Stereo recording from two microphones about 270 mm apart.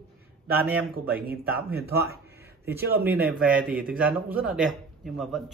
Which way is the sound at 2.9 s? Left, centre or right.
Right.